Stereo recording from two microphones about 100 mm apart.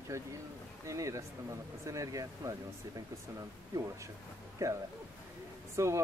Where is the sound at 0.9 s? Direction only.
35° right (ahead or behind).